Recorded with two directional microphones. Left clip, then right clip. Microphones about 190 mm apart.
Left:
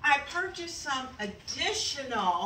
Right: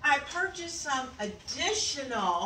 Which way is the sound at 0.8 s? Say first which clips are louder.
Right 1 dB; 10° left (ahead or behind).